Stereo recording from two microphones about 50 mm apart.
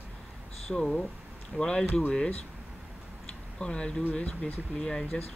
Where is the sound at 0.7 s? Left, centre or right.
Centre.